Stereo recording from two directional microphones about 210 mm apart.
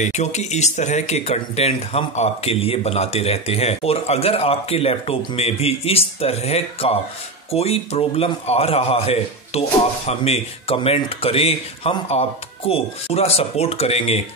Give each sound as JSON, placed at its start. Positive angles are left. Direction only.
{"t": 0.0, "sound": "speech", "side_deg": 35}